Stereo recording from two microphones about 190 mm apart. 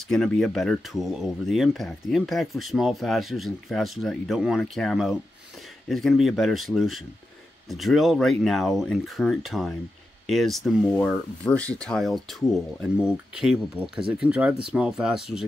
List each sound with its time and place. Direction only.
0.1 s speech: 5° left (ahead or behind)